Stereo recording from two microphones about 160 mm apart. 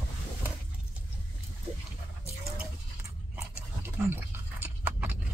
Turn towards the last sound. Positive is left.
turn(degrees=-10)  # may be behind; listen again after turning